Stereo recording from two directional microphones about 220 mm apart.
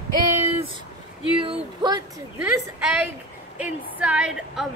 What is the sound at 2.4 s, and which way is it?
A woman's voice, 5° right (ahead or behind).